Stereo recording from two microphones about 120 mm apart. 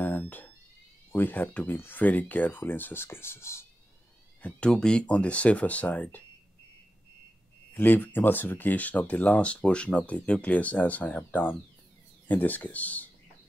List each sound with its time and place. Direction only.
0.0 s a sound: 15° left (ahead or behind)
1.1 s speech: 15° left (ahead or behind)
4.4 s speech: 10° left (ahead or behind)
7.7 s speech: 15° left (ahead or behind)